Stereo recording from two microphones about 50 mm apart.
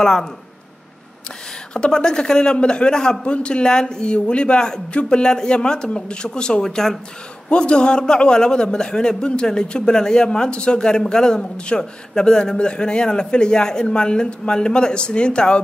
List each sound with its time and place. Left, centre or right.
0.0 s a man's voice: centre
1.7 s a man's voice: centre